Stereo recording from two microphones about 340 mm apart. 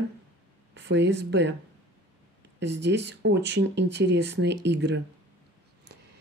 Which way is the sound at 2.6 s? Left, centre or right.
Right.